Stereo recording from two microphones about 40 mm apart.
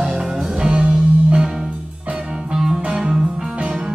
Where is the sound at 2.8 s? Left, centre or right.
Right.